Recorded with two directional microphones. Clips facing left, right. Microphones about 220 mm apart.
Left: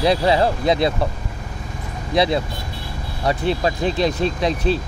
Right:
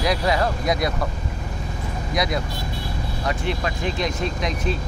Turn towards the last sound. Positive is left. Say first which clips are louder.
# left 5 dB
turn(degrees=30)  # may be behind; listen again after turning